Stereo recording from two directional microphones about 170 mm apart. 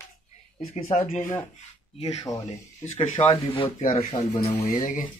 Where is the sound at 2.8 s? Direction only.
45° left (ahead or behind).